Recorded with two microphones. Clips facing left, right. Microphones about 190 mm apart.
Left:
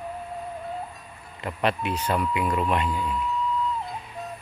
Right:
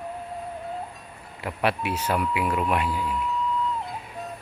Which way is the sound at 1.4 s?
10° right (ahead or behind).